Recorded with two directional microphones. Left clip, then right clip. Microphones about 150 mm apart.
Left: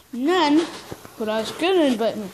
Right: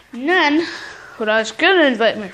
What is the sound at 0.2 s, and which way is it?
Speech, 35° left (ahead or behind).